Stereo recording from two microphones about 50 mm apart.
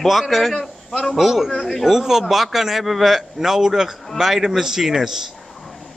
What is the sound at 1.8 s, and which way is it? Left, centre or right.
A man's voice, centre.